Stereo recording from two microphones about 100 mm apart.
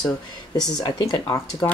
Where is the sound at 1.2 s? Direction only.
25° left (ahead or behind).